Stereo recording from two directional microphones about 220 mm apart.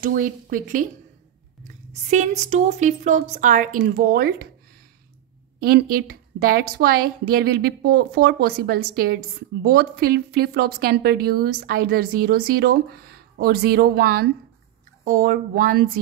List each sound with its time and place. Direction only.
0.0 s a woman's voice: 40° right (ahead or behind)
1.9 s a woman's voice: 30° right (ahead or behind)
5.6 s a woman's voice: 45° right (ahead or behind)